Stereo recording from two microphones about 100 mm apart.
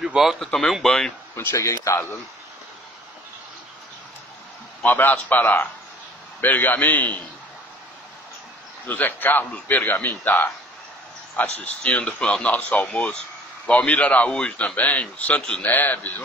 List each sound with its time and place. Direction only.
0.0 s a man's voice: 5° right (ahead or behind)
1.3 s a man's voice: 25° left (ahead or behind)
4.8 s a man's voice: 20° left (ahead or behind)
8.8 s a man's voice: 15° left (ahead or behind)
11.6 s a man's voice: 10° left (ahead or behind)